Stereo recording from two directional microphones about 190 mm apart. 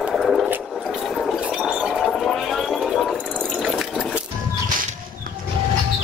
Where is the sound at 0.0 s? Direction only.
Centre (ahead or behind).